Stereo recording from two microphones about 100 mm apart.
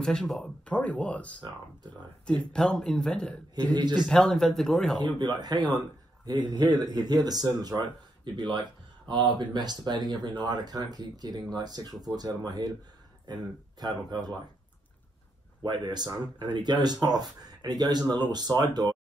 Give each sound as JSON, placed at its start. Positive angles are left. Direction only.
{"t": 0.0, "sound": "a man's voice", "side_deg": 5}
{"t": 3.7, "sound": "speech", "side_deg": -45}
{"t": 4.1, "sound": "speech", "side_deg": 5}
{"t": 5.0, "sound": "speech", "side_deg": -45}
{"t": 15.6, "sound": "speech", "side_deg": -45}